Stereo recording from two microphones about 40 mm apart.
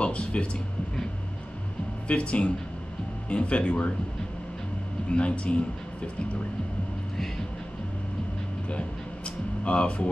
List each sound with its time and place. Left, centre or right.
0.0 s speech: left
2.0 s speech: left
5.1 s speech: left
8.6 s a sound: left